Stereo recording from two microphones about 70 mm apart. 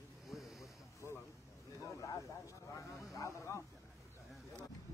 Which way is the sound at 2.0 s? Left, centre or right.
Left.